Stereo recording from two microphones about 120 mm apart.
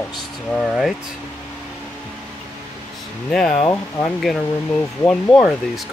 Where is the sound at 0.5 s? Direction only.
Centre (ahead or behind).